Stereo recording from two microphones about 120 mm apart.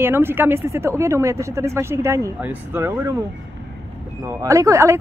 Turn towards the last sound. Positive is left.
turn(degrees=-25)  # may be behind; listen again after turning